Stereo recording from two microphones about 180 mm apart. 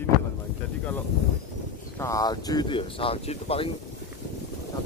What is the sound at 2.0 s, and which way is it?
Speech, 20° left (ahead or behind).